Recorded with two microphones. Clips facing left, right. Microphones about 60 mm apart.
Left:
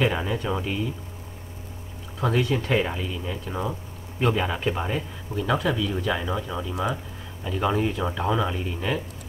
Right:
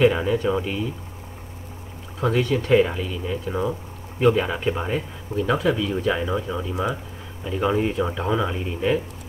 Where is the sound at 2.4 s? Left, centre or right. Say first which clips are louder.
Right 2 dB; right.